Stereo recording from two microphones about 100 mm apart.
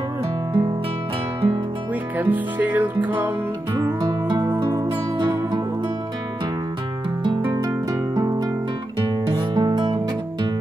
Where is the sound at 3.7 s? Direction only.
50° right (ahead or behind).